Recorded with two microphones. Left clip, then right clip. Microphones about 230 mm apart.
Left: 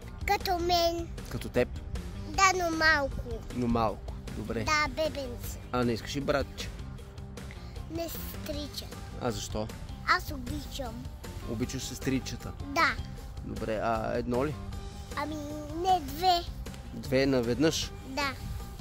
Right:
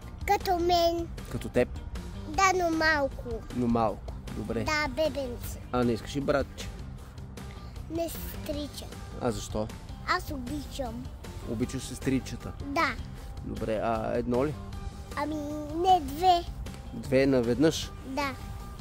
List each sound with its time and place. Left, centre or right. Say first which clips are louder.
0.2 s a sound: right 2 dB; centre
1.3 s speech: right 2 dB; centre
2.3 s speech: right 1 dB; centre
3.6 s speech: right 2 dB; centre
4.6 s speech: even; centre
5.7 s speech: right 2 dB; centre
7.9 s a child's voice: right 4 dB; centre
9.2 s speech: right 2 dB; centre
11.6 s speech: right 1 dB; centre
13.6 s speech: right 1 dB; centre
15.1 s speech: right 3 dB; centre
17.0 s speech: right 3 dB; centre
18.2 s speech: even; centre